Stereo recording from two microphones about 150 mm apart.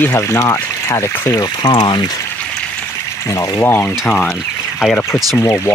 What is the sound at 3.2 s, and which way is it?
Speech, 20° left (ahead or behind).